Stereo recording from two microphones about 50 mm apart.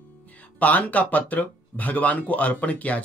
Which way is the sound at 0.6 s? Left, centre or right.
Left.